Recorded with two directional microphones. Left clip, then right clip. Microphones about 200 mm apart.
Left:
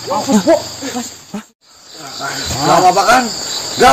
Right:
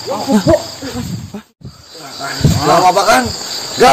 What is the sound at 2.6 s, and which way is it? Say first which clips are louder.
Speech: even; 25° right (ahead or behind).